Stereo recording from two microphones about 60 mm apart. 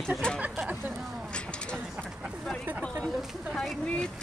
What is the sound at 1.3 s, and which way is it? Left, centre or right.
Vehicle, centre.